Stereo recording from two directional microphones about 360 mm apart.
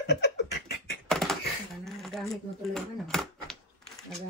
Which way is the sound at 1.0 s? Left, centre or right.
Centre.